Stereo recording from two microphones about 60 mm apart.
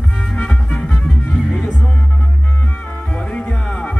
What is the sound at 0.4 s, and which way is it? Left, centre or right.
Music, centre.